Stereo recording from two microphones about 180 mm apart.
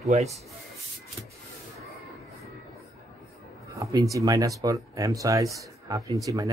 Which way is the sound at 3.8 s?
20° right (ahead or behind).